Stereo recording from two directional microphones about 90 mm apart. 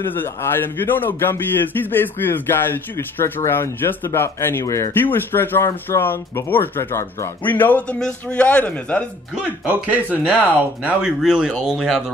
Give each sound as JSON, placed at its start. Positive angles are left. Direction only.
{"t": 0.0, "sound": "a man's voice", "side_deg": 25}
{"t": 4.9, "sound": "a man's voice", "side_deg": 25}
{"t": 7.4, "sound": "a man's voice", "side_deg": 20}
{"t": 9.7, "sound": "speech", "side_deg": -15}